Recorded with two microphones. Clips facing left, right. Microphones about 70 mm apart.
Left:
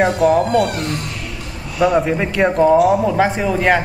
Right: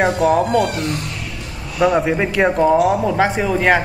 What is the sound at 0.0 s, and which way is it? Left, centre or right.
A man's voice, centre.